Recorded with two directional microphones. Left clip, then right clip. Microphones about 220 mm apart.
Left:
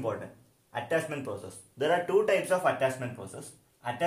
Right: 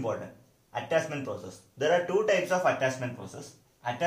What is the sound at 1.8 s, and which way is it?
Speech, 40° left (ahead or behind).